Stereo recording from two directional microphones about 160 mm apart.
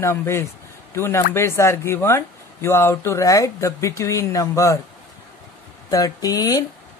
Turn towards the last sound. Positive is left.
turn(degrees=25)  # may be behind; listen again after turning